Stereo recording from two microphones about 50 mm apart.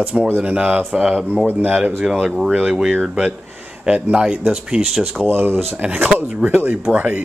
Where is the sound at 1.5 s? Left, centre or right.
Right.